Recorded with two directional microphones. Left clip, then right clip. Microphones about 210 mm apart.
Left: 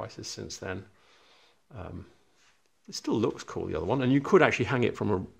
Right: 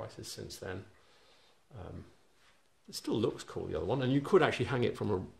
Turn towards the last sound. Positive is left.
turn(degrees=35)  # may be behind; listen again after turning